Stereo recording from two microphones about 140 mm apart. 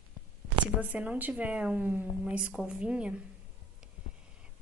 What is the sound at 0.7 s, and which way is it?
Speech, 10° right (ahead or behind).